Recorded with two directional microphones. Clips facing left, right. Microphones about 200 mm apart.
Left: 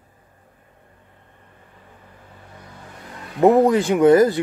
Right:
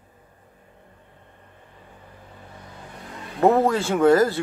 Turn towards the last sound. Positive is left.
turn(degrees=15)  # may be behind; listen again after turning